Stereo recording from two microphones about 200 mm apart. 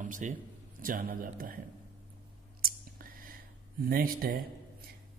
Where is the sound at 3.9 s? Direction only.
45° right (ahead or behind).